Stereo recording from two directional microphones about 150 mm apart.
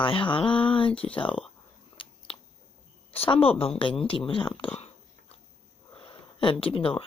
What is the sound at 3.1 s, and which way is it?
Speech, 40° left (ahead or behind).